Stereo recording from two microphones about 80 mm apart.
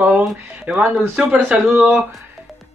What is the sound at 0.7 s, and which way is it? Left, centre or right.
Speech, centre.